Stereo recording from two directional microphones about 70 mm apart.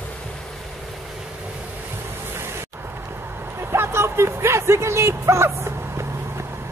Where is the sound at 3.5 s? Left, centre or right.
Right.